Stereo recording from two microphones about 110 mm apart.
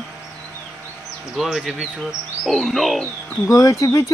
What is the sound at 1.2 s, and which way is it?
Speech, 5° right (ahead or behind).